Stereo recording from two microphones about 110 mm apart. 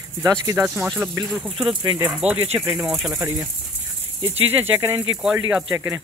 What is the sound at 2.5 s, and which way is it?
Speech, 15° right (ahead or behind).